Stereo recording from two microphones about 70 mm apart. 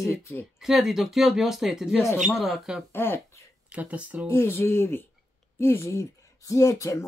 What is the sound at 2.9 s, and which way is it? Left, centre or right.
Speech, left.